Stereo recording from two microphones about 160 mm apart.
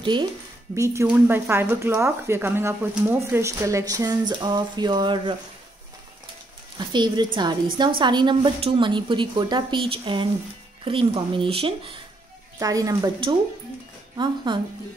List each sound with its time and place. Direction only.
0.0 s speech: 30° right (ahead or behind)
0.7 s a woman's voice: 20° right (ahead or behind)
6.8 s a woman's voice: 30° right (ahead or behind)
12.5 s a woman's voice: 20° right (ahead or behind)